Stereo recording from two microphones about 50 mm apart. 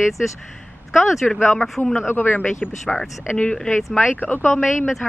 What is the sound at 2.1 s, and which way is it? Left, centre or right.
Speech, left.